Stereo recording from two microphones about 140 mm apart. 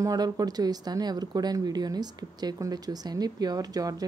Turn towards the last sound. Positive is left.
turn(degrees=-25)  # may be behind; listen again after turning